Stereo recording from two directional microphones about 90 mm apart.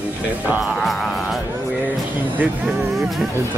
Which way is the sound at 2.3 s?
20° right (ahead or behind).